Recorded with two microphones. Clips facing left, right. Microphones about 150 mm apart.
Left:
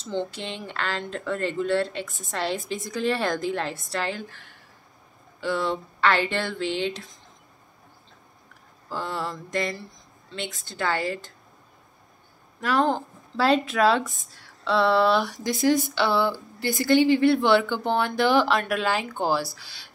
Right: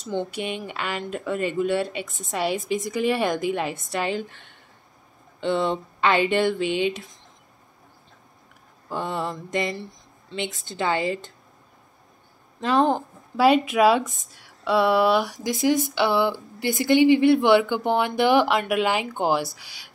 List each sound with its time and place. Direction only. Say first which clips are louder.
0.0 s speech: right 2 dB; 15° right (ahead or behind)
8.8 s a sound: right 3 dB; 20° right (ahead or behind)
12.5 s speech: right 2 dB; 20° right (ahead or behind)